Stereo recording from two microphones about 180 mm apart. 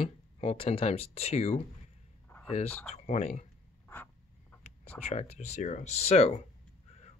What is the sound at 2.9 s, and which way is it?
Speech, 40° left (ahead or behind).